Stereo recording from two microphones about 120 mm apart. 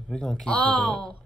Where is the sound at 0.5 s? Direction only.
40° right (ahead or behind).